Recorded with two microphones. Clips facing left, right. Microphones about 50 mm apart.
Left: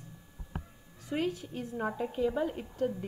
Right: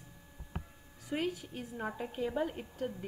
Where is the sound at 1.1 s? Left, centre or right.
Centre.